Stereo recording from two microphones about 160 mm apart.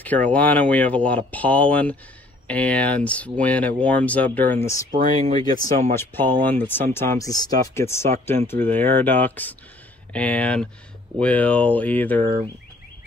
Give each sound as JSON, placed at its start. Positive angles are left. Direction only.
{"t": 0.0, "sound": "speech", "side_deg": 10}
{"t": 4.9, "sound": "speech", "side_deg": -45}
{"t": 5.9, "sound": "speech", "side_deg": 15}